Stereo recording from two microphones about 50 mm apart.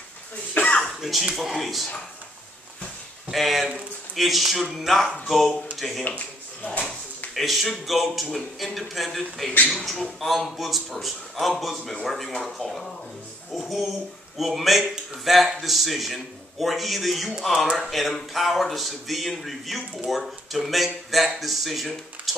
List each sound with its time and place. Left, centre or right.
0.6 s cough: left
1.0 s speech: centre
3.3 s speech: centre
6.0 s a sound: left
7.3 s speech: centre